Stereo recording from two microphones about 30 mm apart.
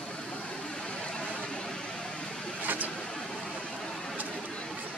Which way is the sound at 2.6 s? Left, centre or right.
Right.